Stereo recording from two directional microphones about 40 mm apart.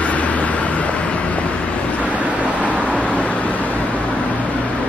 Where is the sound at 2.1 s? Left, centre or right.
Right.